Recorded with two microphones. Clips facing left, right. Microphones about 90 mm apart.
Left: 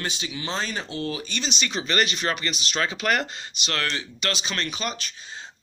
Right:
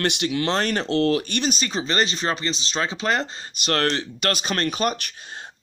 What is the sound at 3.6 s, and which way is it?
Speech, 45° right (ahead or behind).